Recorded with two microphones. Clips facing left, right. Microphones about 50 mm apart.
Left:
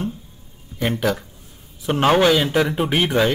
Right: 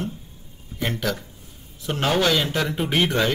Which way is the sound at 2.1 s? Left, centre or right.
Centre.